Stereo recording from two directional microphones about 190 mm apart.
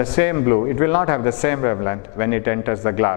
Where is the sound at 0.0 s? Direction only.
15° left (ahead or behind).